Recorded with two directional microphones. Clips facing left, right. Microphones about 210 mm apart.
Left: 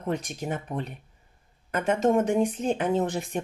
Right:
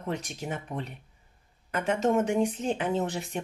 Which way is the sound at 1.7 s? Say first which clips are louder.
Left 3 dB; 50° left (ahead or behind).